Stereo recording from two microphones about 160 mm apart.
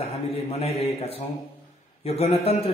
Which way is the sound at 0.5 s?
40° left (ahead or behind).